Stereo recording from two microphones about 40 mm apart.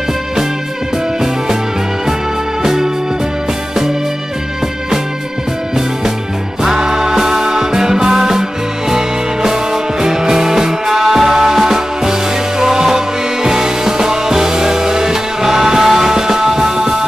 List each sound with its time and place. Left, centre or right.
2.6 s music: centre
6.6 s music: centre